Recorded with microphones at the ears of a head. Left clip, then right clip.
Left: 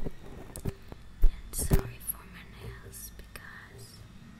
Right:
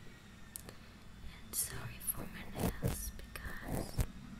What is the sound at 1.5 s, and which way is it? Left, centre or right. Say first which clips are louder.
Whispering: left 11 dB; left.